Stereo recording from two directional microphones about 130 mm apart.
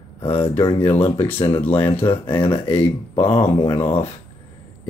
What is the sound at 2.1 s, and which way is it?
Speech, 45° left (ahead or behind).